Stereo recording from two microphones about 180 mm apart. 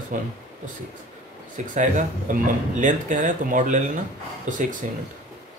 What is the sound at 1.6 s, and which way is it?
Speech, 45° right (ahead or behind).